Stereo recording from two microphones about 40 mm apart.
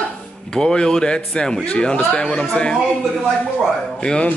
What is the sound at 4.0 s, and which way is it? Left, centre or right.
Speech, left.